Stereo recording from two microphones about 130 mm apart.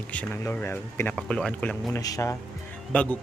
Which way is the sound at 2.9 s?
10° left (ahead or behind).